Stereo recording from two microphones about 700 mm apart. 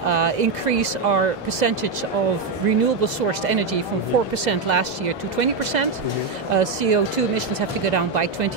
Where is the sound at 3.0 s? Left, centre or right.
Right.